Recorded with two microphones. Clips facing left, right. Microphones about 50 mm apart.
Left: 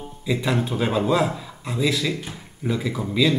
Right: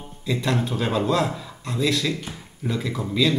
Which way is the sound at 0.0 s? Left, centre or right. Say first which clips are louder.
Left 1 dB; centre.